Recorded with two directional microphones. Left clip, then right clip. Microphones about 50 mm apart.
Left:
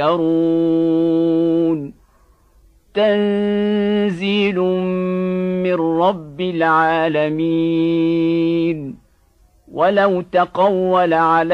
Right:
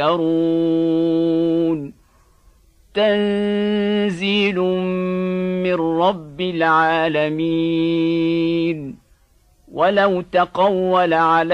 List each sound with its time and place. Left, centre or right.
0.2 s mantra: left
3.2 s mantra: left
9.8 s a man's voice: centre
10.8 s speech: left